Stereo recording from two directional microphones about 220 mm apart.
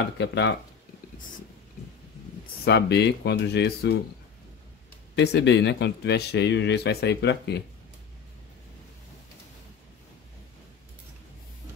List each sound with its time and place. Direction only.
0.2 s speech: 50° left (ahead or behind)
2.6 s speech: 50° left (ahead or behind)
5.1 s speech: 50° left (ahead or behind)